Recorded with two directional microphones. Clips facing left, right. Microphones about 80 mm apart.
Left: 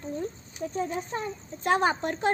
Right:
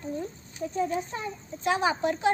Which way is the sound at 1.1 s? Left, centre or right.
Left.